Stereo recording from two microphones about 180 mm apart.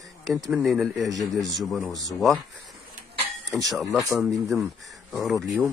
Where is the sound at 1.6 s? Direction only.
Centre (ahead or behind).